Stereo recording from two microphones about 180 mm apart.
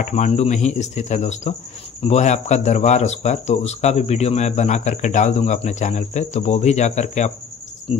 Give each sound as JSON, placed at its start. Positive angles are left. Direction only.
{"t": 0.0, "sound": "speech", "side_deg": 40}